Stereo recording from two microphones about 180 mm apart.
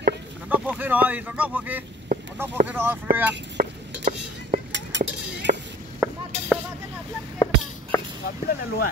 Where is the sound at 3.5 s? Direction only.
45° right (ahead or behind).